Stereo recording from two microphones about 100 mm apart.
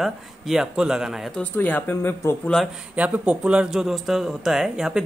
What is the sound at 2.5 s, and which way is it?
Speech, centre (ahead or behind).